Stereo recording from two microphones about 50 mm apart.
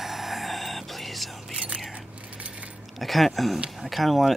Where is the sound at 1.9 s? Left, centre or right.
Right.